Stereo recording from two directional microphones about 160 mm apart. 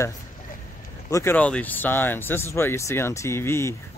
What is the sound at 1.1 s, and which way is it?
Speech, 15° left (ahead or behind).